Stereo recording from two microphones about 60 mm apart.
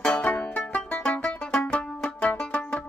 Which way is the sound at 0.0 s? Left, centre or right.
Left.